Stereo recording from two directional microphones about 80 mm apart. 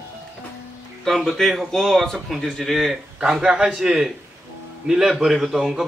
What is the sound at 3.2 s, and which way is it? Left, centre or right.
A man's voice, centre.